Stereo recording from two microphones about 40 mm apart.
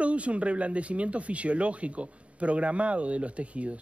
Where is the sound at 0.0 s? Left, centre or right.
Right.